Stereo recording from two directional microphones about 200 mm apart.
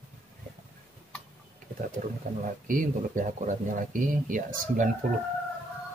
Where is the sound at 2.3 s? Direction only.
40° right (ahead or behind).